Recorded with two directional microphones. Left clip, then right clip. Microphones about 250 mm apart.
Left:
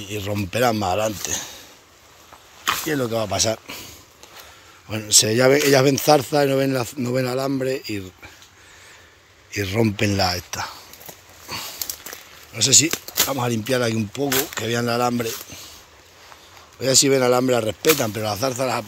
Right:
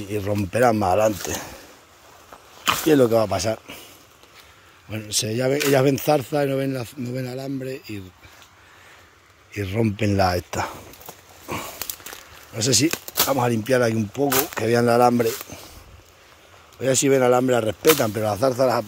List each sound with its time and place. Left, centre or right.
0.0 s speech: centre
2.7 s speech: right
3.3 s speech: centre
4.8 s speech: centre
9.5 s speech: centre
10.1 s speech: right
11.4 s a sound: right
12.1 s a sound: centre
12.5 s speech: right
16.8 s speech: centre